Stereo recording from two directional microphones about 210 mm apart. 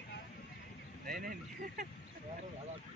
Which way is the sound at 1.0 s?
40° right (ahead or behind).